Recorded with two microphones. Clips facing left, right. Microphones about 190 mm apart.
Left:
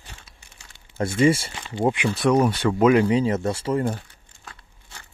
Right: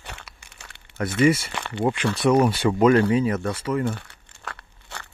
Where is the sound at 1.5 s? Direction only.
65° right (ahead or behind).